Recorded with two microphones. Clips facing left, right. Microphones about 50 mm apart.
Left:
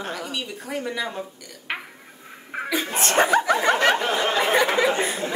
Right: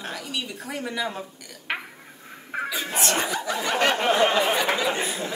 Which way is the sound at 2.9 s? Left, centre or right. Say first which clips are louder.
Left 7 dB; left.